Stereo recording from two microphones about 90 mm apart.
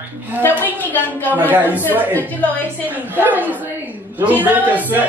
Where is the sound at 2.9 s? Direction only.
20° right (ahead or behind).